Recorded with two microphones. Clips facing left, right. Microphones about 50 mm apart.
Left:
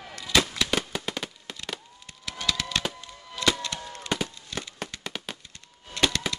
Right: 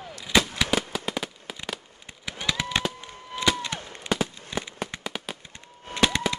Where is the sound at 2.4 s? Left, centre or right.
Right.